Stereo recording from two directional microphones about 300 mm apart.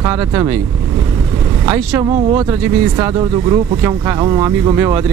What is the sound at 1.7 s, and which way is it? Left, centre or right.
Speech, centre.